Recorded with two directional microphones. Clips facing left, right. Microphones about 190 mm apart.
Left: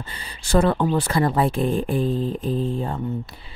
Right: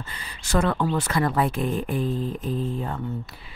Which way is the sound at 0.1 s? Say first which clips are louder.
Left 5 dB; 30° left (ahead or behind).